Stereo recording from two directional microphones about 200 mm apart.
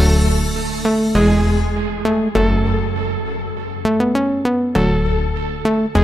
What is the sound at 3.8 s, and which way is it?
Music, centre (ahead or behind).